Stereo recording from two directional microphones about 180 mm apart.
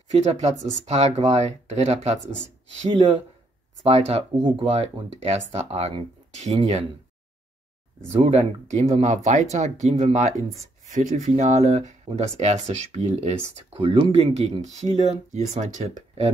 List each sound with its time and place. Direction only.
0.1 s speech: 35° right (ahead or behind)
3.8 s speech: 35° right (ahead or behind)
8.1 s speech: 35° right (ahead or behind)